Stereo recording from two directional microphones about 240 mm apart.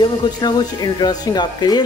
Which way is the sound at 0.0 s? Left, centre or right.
Centre.